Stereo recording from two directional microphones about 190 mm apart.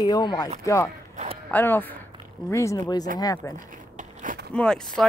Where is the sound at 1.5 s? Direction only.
10° left (ahead or behind).